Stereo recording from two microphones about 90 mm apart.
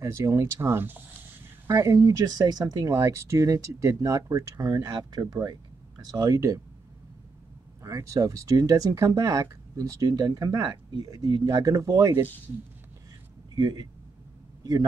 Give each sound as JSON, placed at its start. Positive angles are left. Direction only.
{"t": 0.0, "sound": "speech", "side_deg": -35}
{"t": 1.7, "sound": "speech", "side_deg": -35}
{"t": 2.9, "sound": "speech", "side_deg": -35}
{"t": 7.8, "sound": "speech", "side_deg": -35}
{"t": 13.6, "sound": "a man's voice", "side_deg": -45}